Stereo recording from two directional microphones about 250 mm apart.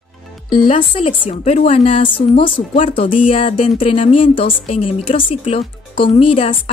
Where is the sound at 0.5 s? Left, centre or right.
Centre.